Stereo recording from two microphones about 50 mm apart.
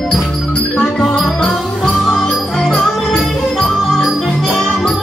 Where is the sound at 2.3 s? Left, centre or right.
Centre.